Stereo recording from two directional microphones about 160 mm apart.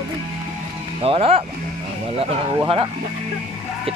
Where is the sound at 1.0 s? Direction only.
35° right (ahead or behind).